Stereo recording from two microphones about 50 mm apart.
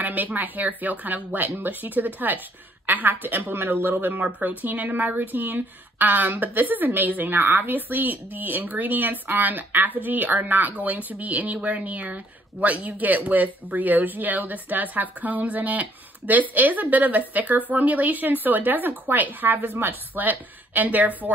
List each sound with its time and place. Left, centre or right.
0.0 s a woman's voice: right